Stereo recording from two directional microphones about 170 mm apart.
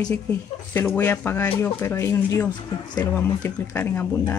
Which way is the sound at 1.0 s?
10° left (ahead or behind).